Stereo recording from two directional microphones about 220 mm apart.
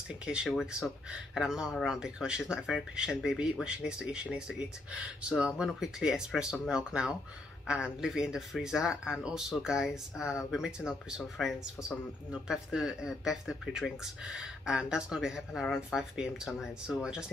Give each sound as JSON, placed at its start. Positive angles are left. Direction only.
{"t": 0.1, "sound": "speech", "side_deg": -5}